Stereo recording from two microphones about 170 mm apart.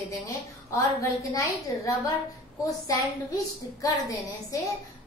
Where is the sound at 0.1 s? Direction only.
20° left (ahead or behind).